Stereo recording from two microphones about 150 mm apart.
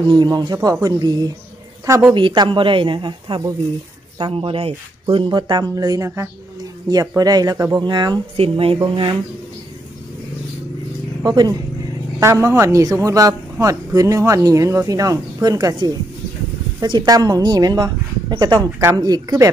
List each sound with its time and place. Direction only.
0.1 s a man's voice: 30° right (ahead or behind)
2.1 s a man's voice: 30° right (ahead or behind)
8.4 s speech: 40° right (ahead or behind)
11.2 s a man's voice: 25° right (ahead or behind)